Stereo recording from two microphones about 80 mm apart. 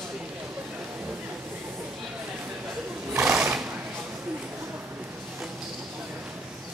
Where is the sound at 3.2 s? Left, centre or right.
Centre.